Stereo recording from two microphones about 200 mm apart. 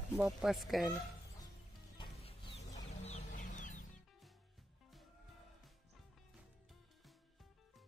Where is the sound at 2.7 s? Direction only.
35° left (ahead or behind).